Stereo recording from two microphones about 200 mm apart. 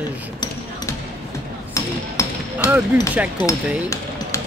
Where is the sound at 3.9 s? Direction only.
15° left (ahead or behind).